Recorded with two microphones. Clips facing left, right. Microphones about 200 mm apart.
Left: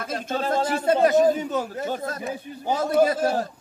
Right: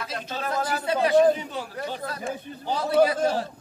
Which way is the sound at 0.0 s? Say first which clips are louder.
Left 5 dB; 50° left (ahead or behind).